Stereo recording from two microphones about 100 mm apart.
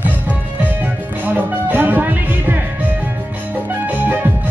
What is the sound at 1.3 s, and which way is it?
Music, 15° right (ahead or behind).